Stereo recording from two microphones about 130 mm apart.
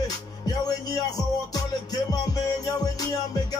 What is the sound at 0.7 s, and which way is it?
Music, 30° left (ahead or behind).